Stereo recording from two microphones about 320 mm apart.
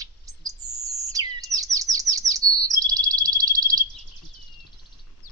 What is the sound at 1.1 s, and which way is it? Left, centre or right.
Bird, centre.